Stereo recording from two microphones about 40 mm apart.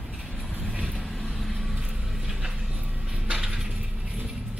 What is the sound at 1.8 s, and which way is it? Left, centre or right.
Vehicle, centre.